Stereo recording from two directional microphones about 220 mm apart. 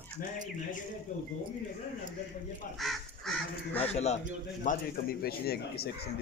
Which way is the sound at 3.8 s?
30° left (ahead or behind).